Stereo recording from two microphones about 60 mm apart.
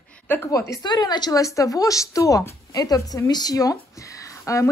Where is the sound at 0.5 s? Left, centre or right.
Left.